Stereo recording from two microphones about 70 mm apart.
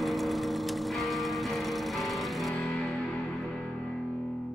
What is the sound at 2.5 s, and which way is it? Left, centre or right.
Music, centre.